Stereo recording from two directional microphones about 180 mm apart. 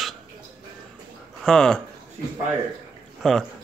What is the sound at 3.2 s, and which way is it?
Speech, centre (ahead or behind).